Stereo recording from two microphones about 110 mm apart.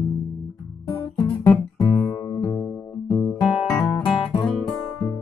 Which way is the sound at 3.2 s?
15° left (ahead or behind).